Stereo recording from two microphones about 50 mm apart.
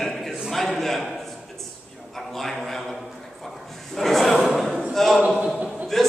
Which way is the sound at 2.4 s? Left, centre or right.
Centre.